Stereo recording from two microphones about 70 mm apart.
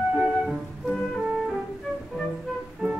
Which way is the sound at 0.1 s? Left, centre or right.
Centre.